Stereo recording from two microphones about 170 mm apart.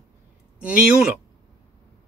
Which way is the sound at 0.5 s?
5° right (ahead or behind).